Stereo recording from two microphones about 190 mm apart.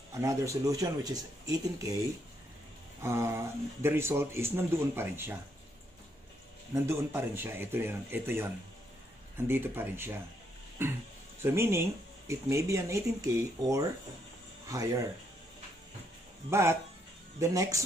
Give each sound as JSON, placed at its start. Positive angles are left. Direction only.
{"t": 0.1, "sound": "speech", "side_deg": -15}
{"t": 6.7, "sound": "speech", "side_deg": -15}
{"t": 9.5, "sound": "speech", "side_deg": -10}
{"t": 11.4, "sound": "speech", "side_deg": -15}
{"t": 16.4, "sound": "speech", "side_deg": -15}